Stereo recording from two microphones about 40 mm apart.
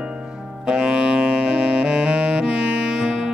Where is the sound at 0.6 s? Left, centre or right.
Right.